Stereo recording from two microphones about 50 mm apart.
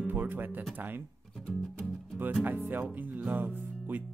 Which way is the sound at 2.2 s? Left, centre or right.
Right.